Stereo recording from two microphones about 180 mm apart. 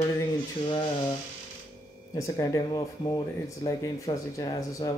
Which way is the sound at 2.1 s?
20° left (ahead or behind).